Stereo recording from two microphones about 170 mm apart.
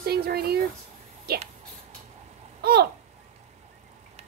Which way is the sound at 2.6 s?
70° right (ahead or behind).